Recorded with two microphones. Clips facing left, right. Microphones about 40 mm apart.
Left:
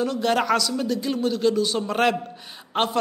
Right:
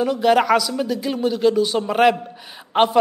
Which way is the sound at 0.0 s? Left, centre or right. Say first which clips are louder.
Right 6 dB; centre.